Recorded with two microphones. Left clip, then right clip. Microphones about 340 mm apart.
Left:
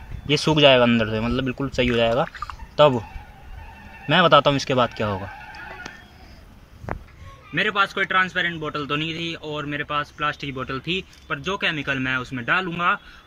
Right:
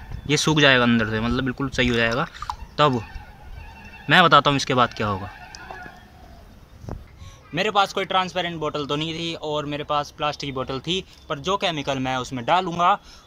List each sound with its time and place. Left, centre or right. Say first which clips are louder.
0.3 s speech: left 2 dB; centre
4.1 s speech: right 1 dB; centre
7.5 s a man's voice: even; centre